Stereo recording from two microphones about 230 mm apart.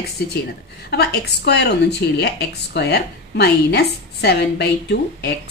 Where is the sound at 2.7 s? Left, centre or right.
Left.